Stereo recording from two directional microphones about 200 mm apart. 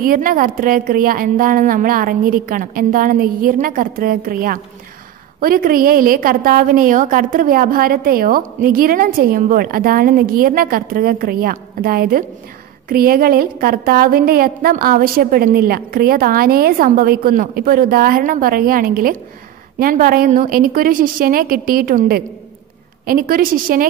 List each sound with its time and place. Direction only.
0.0 s a woman's voice: 45° right (ahead or behind)